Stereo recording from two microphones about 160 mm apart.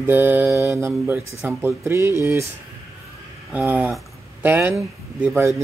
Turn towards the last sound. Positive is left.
turn(degrees=-15)  # may be behind; listen again after turning